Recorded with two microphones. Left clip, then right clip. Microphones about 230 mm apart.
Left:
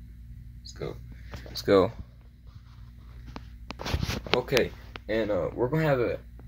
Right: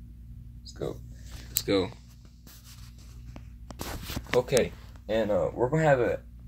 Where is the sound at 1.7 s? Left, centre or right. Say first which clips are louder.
Left 6 dB; left.